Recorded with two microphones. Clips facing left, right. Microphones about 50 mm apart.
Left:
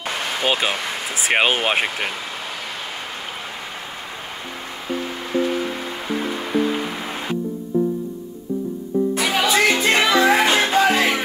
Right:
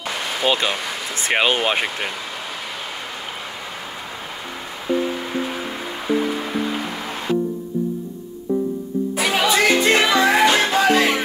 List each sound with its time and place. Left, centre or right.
0.3 s speech: centre
4.9 s music: centre
7.7 s music: left
9.1 s music: centre